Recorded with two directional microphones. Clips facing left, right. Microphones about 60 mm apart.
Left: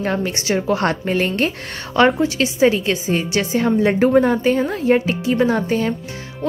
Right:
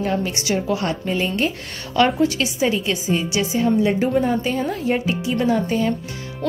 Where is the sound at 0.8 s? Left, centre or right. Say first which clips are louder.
Left 4 dB; left.